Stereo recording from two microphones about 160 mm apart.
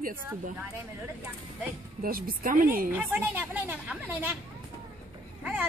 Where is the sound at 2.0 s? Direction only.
65° right (ahead or behind).